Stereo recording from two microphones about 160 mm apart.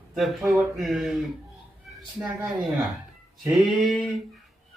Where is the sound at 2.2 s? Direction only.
15° right (ahead or behind).